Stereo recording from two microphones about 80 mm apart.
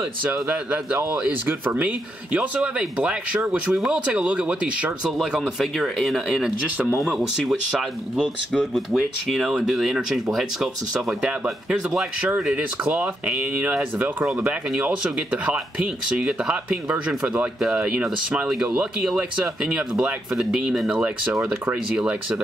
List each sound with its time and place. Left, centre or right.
0.2 s speech: centre
5.1 s speech: centre
12.4 s speech: centre